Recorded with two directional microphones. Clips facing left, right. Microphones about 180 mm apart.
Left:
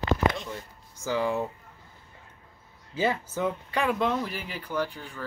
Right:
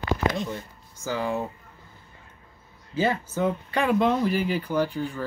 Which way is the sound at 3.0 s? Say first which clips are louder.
Right 3 dB; 15° left (ahead or behind).